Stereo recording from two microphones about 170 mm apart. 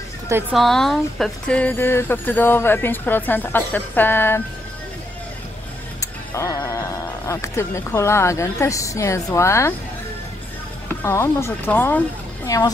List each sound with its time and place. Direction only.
0.5 s speech: centre (ahead or behind)
5.9 s speech: 20° left (ahead or behind)
11.0 s a woman's voice: 15° left (ahead or behind)